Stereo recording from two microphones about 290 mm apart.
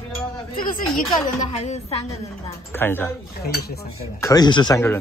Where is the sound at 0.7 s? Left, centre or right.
Left.